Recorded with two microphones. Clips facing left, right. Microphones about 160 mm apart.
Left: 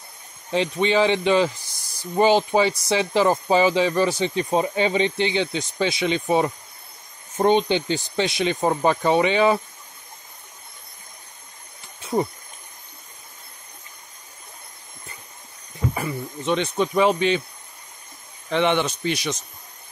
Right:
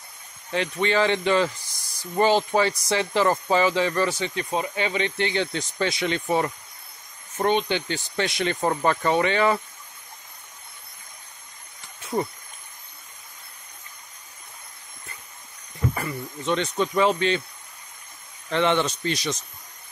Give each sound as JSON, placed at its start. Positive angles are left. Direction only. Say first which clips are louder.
{"t": 0.5, "sound": "speech", "louder": "left 3 dB", "side_deg": 20}
{"t": 7.3, "sound": "speech", "louder": "left 4 dB", "side_deg": 30}
{"t": 15.9, "sound": "speech", "louder": "left 2 dB", "side_deg": 15}
{"t": 18.5, "sound": "speech", "louder": "left 1 dB", "side_deg": 15}